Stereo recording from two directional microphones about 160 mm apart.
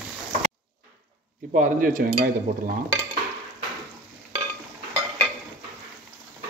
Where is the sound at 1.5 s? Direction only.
55° right (ahead or behind).